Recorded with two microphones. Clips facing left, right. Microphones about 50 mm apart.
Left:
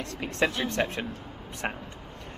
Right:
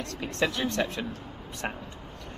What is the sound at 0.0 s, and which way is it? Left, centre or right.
Speech, left.